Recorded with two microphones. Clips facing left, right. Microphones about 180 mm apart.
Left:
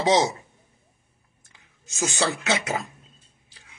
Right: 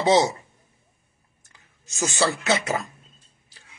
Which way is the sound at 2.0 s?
20° left (ahead or behind).